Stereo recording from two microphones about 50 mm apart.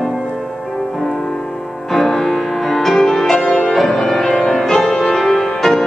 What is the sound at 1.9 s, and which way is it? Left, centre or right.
Music, centre.